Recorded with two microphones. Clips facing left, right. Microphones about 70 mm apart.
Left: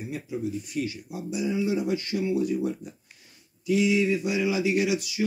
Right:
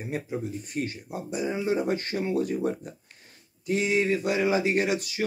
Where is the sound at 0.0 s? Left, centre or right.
Right.